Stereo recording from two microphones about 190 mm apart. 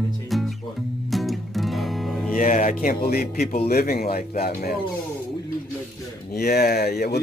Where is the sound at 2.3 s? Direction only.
45° left (ahead or behind).